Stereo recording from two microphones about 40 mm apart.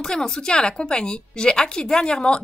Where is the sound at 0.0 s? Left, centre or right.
Centre.